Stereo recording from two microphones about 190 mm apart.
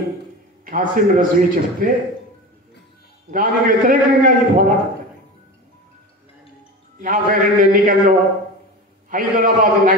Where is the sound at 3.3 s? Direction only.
45° right (ahead or behind).